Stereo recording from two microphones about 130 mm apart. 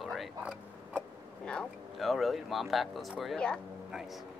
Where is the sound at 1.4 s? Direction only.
5° left (ahead or behind).